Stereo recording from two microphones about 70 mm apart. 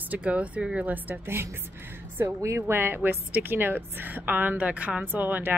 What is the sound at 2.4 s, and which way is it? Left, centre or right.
Speech, right.